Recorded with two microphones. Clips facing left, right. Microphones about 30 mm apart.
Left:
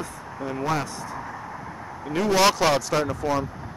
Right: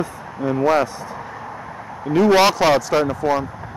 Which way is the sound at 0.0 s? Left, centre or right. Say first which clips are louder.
Right 8 dB; centre.